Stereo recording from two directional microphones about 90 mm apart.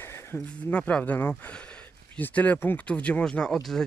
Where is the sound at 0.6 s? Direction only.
15° left (ahead or behind).